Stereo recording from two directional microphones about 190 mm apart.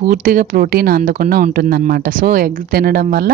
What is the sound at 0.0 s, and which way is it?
Speech, 45° right (ahead or behind).